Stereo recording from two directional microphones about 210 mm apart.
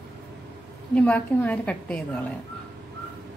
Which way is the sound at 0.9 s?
5° left (ahead or behind).